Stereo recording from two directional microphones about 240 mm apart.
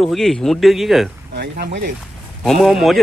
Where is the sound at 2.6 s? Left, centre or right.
Centre.